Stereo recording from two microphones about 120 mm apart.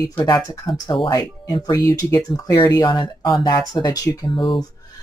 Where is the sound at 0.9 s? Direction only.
45° left (ahead or behind).